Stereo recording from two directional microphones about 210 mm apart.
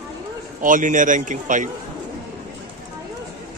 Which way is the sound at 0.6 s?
40° right (ahead or behind).